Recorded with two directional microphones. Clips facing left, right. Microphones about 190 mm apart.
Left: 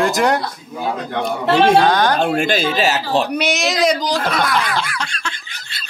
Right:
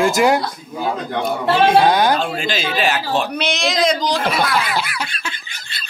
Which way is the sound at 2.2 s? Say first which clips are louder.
Left 5 dB; 55° left (ahead or behind).